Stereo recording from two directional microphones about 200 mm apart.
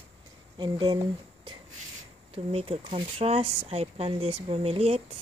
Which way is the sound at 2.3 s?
30° right (ahead or behind).